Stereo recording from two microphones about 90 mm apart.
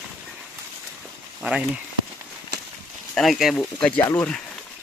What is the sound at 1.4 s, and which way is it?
Speech, 10° right (ahead or behind).